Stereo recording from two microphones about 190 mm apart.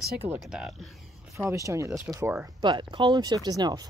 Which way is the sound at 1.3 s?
15° right (ahead or behind).